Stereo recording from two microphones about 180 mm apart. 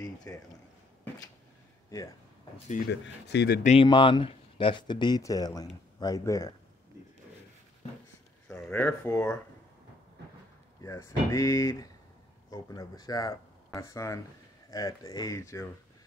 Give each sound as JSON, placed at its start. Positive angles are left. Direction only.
{"t": 0.0, "sound": "a sound", "side_deg": 20}
{"t": 2.9, "sound": "speech", "side_deg": 65}
{"t": 3.6, "sound": "speech", "side_deg": 30}
{"t": 8.5, "sound": "speech", "side_deg": 5}
{"t": 10.8, "sound": "speech", "side_deg": 15}